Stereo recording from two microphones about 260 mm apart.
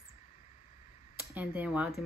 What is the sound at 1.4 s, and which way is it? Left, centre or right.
Speech, centre.